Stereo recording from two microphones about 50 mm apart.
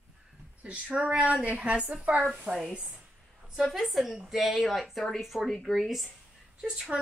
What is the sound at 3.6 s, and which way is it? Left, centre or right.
Speech, centre.